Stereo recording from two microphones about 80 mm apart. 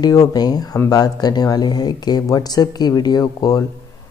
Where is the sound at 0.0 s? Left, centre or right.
Left.